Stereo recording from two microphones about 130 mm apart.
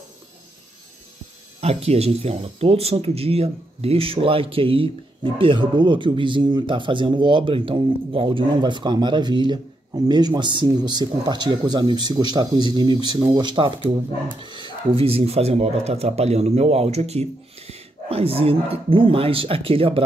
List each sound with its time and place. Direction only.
1.6 s speech: 50° right (ahead or behind)